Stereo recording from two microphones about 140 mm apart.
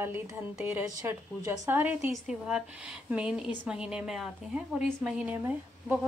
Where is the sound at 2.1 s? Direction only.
5° right (ahead or behind).